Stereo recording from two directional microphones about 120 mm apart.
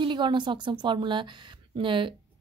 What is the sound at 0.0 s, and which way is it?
A woman's voice, 40° right (ahead or behind).